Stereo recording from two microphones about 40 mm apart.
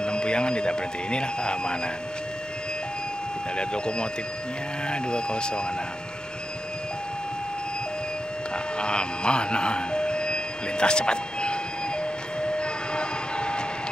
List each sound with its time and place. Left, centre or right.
0.0 s speech: left
3.5 s speech: left
8.7 s a sound: left